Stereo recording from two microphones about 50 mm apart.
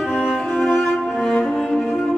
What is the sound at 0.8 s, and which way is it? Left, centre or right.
Cello, centre.